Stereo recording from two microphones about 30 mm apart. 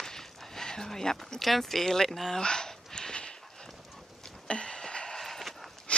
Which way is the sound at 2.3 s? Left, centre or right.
Left.